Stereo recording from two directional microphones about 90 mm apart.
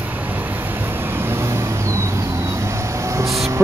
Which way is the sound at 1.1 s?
25° right (ahead or behind).